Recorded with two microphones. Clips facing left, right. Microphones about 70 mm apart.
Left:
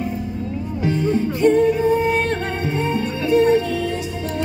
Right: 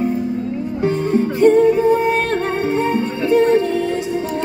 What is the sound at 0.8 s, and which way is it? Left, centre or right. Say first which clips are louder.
Music: right 2 dB; right.